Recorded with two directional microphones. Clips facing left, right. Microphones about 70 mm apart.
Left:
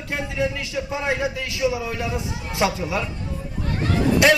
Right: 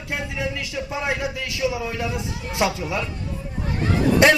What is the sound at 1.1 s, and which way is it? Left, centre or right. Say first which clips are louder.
A man's voice: left 2 dB; left.